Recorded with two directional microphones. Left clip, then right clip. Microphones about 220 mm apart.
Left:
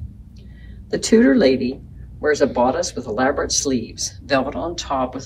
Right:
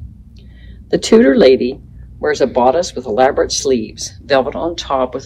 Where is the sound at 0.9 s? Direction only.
25° right (ahead or behind).